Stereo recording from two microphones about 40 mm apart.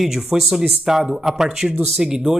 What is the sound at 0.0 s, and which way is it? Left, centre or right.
Speech, centre.